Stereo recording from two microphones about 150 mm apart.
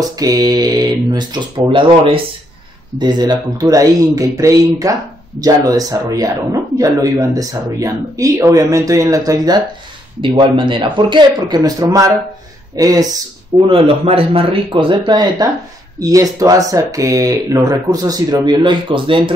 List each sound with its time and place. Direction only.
0.0 s speech: 25° right (ahead or behind)
13.7 s speech: 40° right (ahead or behind)